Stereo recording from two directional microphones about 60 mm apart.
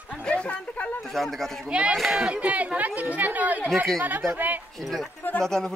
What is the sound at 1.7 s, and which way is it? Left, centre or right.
Speech, centre.